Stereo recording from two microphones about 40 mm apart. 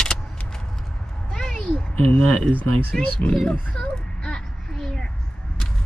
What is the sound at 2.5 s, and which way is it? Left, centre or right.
Speech, centre.